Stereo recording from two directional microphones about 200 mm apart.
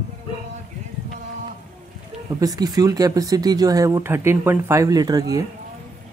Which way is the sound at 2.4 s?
20° right (ahead or behind).